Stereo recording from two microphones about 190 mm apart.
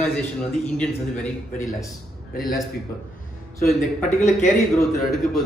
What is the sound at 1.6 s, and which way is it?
Speech, 15° left (ahead or behind).